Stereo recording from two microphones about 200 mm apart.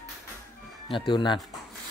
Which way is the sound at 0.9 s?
25° left (ahead or behind).